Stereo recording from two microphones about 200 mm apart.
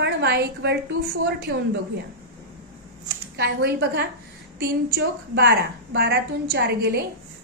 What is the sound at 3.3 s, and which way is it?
A woman's voice, 55° right (ahead or behind).